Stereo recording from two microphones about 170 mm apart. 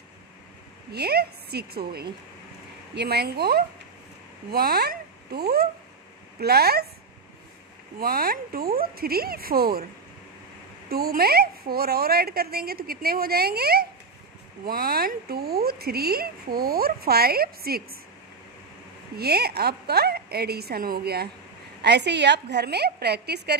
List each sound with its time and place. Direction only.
0.9 s a woman's voice: 70° right (ahead or behind)
8.0 s speech: 60° right (ahead or behind)
10.9 s speech: 65° right (ahead or behind)
19.1 s a woman's voice: 70° right (ahead or behind)
21.8 s a woman's voice: 85° right